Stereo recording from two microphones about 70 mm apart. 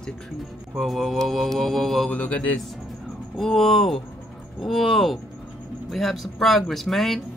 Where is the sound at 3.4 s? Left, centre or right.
Centre.